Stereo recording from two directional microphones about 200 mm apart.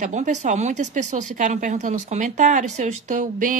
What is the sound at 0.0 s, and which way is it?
A woman's voice, 35° right (ahead or behind).